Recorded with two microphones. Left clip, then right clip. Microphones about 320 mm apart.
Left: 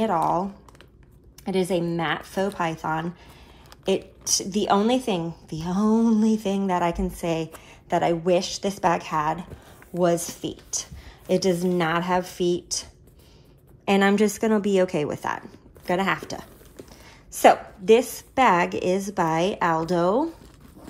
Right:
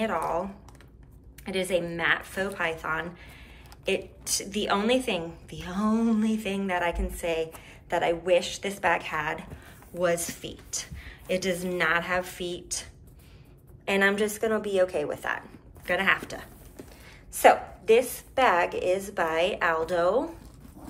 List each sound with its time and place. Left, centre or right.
0.0 s a woman's voice: centre
13.8 s a woman's voice: centre